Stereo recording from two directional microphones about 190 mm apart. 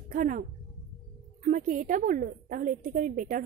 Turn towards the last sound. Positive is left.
turn(degrees=-45)  # may be behind; listen again after turning